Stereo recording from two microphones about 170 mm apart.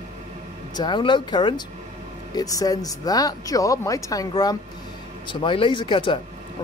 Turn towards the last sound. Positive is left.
turn(degrees=30)  # may be behind; listen again after turning